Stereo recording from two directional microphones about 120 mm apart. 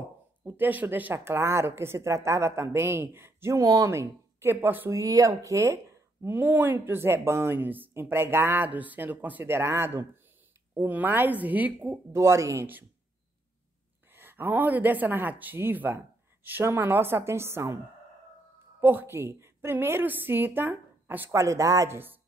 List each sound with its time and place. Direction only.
0.5 s a woman's voice: 15° right (ahead or behind)
14.1 s a woman's voice: 15° right (ahead or behind)
18.8 s a woman's voice: 20° right (ahead or behind)